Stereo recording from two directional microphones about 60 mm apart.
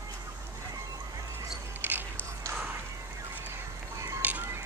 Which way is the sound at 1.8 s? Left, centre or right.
Right.